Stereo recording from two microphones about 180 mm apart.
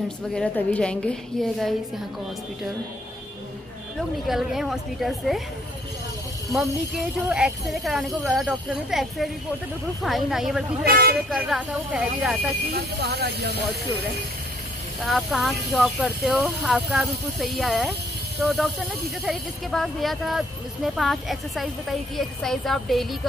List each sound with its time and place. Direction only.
0.3 s speech: 5° left (ahead or behind)
4.3 s speech: centre (ahead or behind)
6.5 s speech: centre (ahead or behind)
10.9 s speech: 60° right (ahead or behind)
11.2 s speech: centre (ahead or behind)
12.6 s speech: 60° right (ahead or behind)
15.0 s speech: centre (ahead or behind)